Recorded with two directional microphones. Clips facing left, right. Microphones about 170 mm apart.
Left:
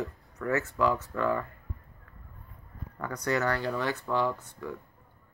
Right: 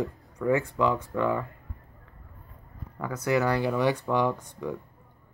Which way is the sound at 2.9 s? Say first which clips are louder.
Right 4 dB; 5° right (ahead or behind).